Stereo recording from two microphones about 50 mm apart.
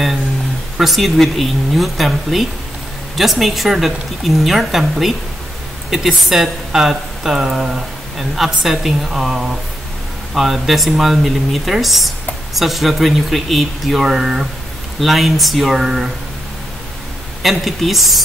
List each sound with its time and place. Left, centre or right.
0.7 s a woman's voice: centre
14.0 s a woman's voice: centre
17.4 s a woman's voice: centre